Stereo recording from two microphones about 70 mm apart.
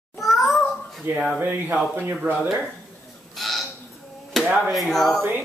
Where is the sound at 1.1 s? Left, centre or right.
Right.